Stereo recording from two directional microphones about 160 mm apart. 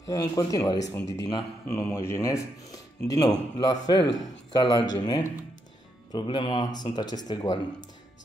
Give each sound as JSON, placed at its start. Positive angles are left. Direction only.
{"t": 0.0, "sound": "speech", "side_deg": 20}